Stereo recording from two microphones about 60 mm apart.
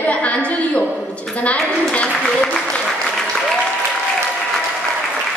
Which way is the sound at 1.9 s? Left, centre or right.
Centre.